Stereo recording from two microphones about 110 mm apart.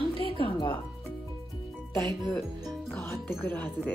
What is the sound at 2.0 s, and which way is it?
Speech, 25° left (ahead or behind).